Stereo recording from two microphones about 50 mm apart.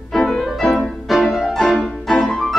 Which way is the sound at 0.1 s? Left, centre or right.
Centre.